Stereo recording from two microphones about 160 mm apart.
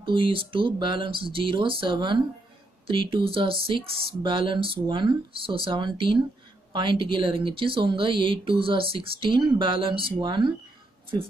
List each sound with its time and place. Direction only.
0.0 s speech: 30° right (ahead or behind)